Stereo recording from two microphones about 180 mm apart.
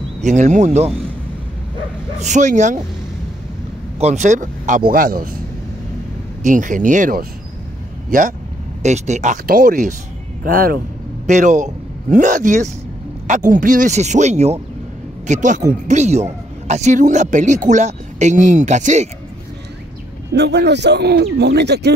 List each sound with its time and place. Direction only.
0.2 s speech: 40° right (ahead or behind)
2.1 s speech: 40° right (ahead or behind)
4.0 s speech: 40° right (ahead or behind)
6.4 s speech: 45° right (ahead or behind)
11.2 s a man's voice: 45° right (ahead or behind)
20.3 s speech: 70° right (ahead or behind)